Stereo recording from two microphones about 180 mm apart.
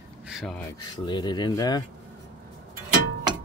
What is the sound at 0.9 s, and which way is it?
Speech, 25° left (ahead or behind).